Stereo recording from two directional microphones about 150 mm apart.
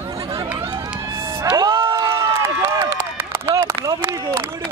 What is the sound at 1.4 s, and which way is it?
Cheering, 30° right (ahead or behind).